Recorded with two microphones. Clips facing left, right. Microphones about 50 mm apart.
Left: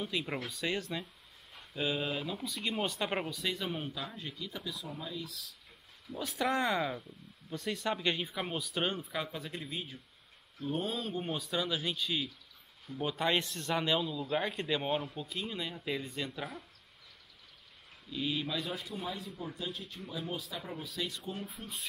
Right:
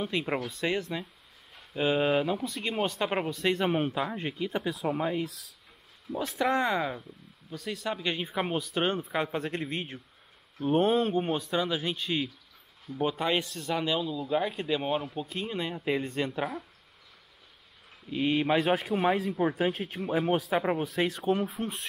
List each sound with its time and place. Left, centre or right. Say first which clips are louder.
0.0 s speech: right 6 dB; right
3.6 s speech: right 10 dB; right
4.2 s speech: right 10 dB; right
6.5 s speech: right 4 dB; right
6.8 s speech: right 3 dB; centre
7.5 s speech: right 1 dB; centre
8.0 s speech: right 3 dB; centre
9.3 s speech: right 9 dB; right
11.1 s speech: right 7 dB; right; by 15.1 s centre
15.1 s speech: right 5 dB; right
18.3 s speech: right 14 dB; right
21.5 s speech: right 12 dB; right